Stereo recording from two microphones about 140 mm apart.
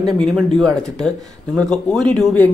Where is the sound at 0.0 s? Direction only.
Centre (ahead or behind).